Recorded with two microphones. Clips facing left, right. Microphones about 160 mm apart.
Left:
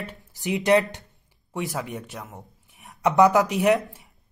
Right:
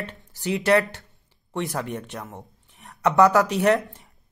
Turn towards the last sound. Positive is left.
turn(degrees=15)  # may be behind; listen again after turning